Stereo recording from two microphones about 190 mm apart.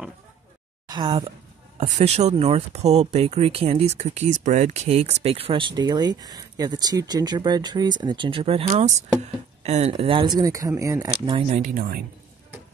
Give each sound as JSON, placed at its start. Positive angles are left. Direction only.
{"t": 0.8, "sound": "speech", "side_deg": -20}
{"t": 1.8, "sound": "speech", "side_deg": -35}
{"t": 11.4, "sound": "speech", "side_deg": -40}